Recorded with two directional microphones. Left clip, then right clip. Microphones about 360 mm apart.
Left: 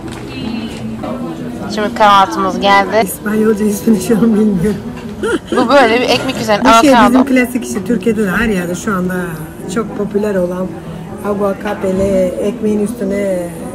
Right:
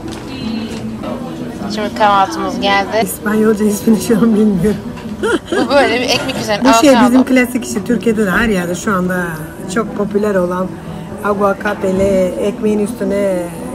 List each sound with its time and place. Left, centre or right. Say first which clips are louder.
1.7 s a woman's voice: left 3 dB; centre
3.5 s a woman's voice: even; right
3.8 s a woman's voice: left 1 dB; centre
12.0 s a woman's voice: even; centre